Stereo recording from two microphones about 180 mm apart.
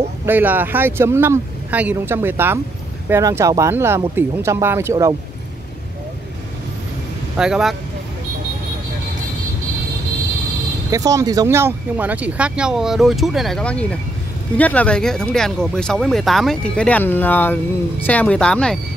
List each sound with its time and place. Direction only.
0.2 s speech: 10° right (ahead or behind)
7.3 s speech: 5° right (ahead or behind)
10.9 s speech: 20° right (ahead or behind); by 18.8 s 5° left (ahead or behind)